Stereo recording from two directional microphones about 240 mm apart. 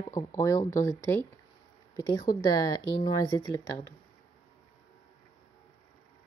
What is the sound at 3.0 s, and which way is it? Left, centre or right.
Speech, centre.